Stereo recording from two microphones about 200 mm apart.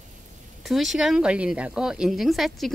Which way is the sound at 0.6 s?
Centre (ahead or behind).